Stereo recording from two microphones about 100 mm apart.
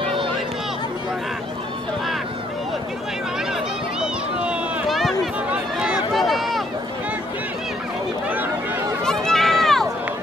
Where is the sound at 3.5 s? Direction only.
5° right (ahead or behind).